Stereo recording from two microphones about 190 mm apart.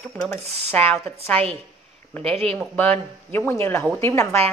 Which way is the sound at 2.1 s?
5° left (ahead or behind).